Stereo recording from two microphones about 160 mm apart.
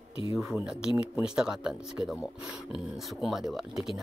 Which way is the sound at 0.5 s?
5° right (ahead or behind).